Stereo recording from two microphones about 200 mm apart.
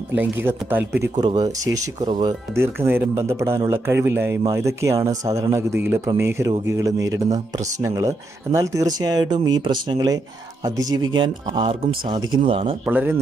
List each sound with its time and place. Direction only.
0.1 s speech: 10° right (ahead or behind)
1.1 s speech: 20° right (ahead or behind)
2.5 s speech: 10° right (ahead or behind); by 12.7 s 30° right (ahead or behind)
12.8 s speech: 10° right (ahead or behind)